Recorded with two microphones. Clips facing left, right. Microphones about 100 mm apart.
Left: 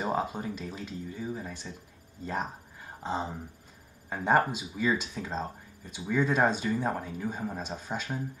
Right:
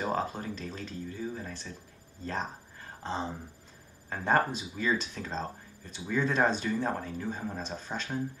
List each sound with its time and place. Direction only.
0.0 s speech: 10° left (ahead or behind)